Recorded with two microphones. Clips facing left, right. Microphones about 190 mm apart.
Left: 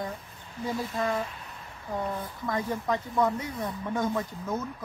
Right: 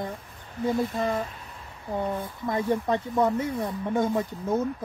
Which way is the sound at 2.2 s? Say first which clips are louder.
Right 3 dB; 25° right (ahead or behind).